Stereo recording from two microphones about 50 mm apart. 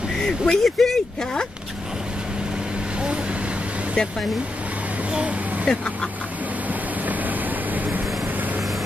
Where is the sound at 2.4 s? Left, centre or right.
Centre.